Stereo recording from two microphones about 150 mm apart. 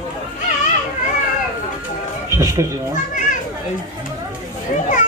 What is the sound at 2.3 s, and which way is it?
Speech, 20° right (ahead or behind).